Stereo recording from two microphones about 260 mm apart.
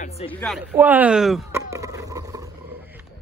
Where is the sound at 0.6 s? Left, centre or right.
Centre.